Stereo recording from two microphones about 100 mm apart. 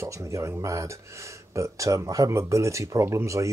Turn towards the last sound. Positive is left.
turn(degrees=-30)  # may be behind; listen again after turning